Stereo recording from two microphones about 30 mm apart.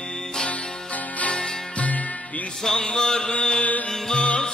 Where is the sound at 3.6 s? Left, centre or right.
Left.